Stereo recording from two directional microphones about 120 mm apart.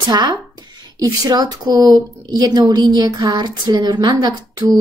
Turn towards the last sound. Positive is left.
turn(degrees=-35)  # may be behind; listen again after turning